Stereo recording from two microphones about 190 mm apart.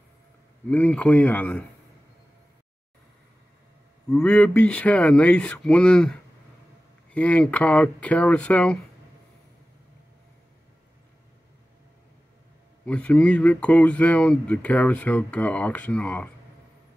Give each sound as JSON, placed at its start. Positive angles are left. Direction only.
{"t": 0.7, "sound": "speech", "side_deg": 5}
{"t": 4.1, "sound": "speech", "side_deg": 5}
{"t": 12.8, "sound": "speech", "side_deg": 5}